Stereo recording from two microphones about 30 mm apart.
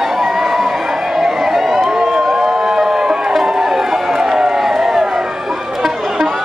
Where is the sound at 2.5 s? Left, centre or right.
Centre.